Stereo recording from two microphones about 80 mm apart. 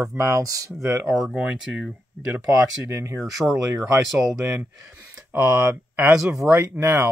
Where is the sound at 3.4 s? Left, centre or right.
Centre.